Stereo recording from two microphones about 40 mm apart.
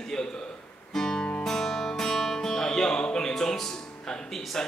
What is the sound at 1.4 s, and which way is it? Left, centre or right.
Music, centre.